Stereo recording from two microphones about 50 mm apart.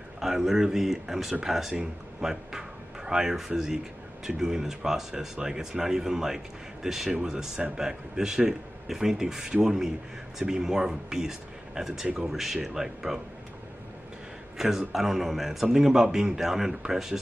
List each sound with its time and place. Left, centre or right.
0.2 s speech: centre
7.1 s speech: right
7.7 s speech: centre
14.6 s a man's voice: centre